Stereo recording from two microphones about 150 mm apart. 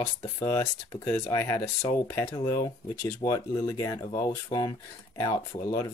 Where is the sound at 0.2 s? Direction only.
20° left (ahead or behind).